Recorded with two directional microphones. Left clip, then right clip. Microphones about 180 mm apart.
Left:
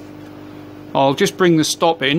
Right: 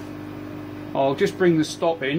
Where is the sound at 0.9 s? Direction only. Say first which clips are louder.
Left 6 dB; 60° left (ahead or behind).